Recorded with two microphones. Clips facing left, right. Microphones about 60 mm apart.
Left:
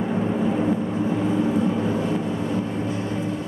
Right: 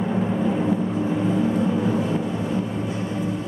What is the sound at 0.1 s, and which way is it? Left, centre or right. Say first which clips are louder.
Vehicle: even; centre.